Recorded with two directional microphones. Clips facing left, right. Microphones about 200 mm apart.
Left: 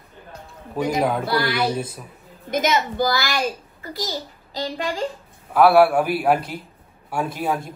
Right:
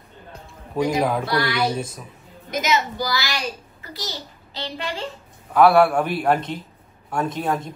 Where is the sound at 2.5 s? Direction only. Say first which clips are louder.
Left 2 dB; 50° left (ahead or behind).